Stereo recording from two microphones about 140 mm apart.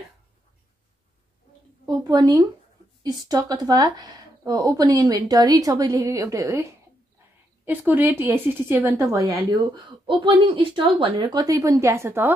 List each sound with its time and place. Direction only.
1.9 s speech: 30° right (ahead or behind)
9.5 s speech: 35° right (ahead or behind); by 12.4 s 15° right (ahead or behind)